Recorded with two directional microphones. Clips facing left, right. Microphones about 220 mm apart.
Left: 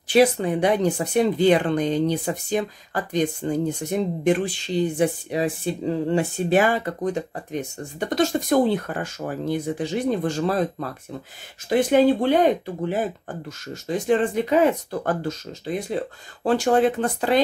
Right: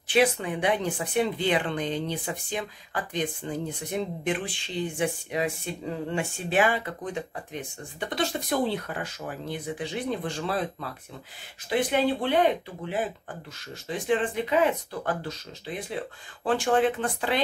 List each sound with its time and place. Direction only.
0.1 s speech: 40° left (ahead or behind)